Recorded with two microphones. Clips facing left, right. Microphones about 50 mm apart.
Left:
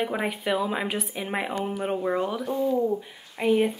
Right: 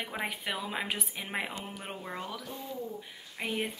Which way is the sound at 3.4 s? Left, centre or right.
Centre.